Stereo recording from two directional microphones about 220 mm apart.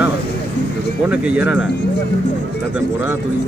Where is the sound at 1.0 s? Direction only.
5° right (ahead or behind).